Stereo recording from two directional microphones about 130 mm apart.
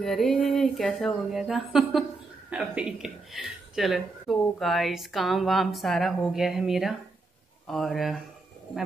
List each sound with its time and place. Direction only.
0.0 s speech: centre (ahead or behind)